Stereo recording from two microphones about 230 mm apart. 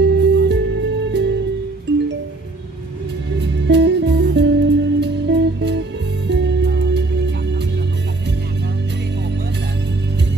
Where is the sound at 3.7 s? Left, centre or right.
Right.